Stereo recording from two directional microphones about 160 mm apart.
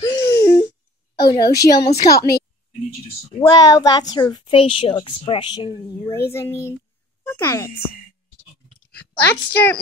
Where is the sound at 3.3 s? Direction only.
25° left (ahead or behind).